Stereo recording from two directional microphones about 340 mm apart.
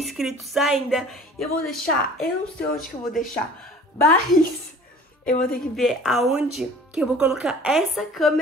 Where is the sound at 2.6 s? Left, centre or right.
Left.